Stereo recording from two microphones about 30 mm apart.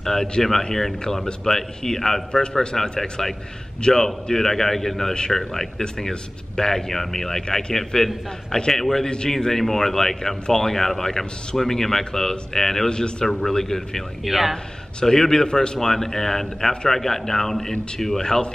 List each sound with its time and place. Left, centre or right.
0.0 s a man's voice: centre
14.2 s speech: centre
15.0 s a man's voice: centre